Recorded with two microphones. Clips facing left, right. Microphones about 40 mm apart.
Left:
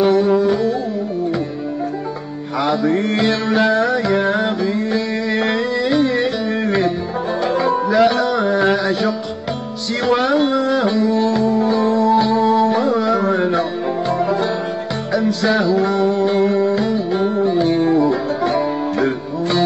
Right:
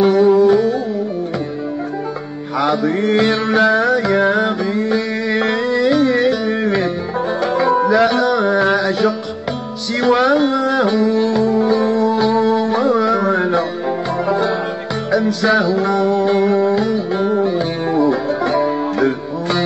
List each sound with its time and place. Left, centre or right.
0.0 s music: centre
2.6 s music: centre
15.1 s music: centre